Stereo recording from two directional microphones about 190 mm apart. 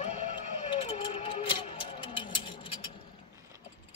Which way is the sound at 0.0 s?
35° left (ahead or behind).